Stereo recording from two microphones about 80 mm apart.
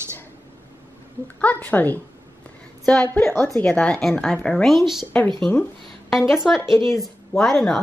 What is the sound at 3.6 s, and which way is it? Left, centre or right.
A woman's voice, centre.